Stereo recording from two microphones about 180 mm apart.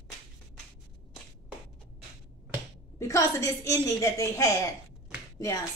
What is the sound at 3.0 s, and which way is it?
A woman's voice, 15° left (ahead or behind).